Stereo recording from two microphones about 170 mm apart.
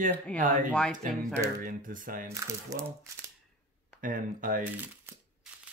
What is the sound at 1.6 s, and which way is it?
Speech, 50° right (ahead or behind).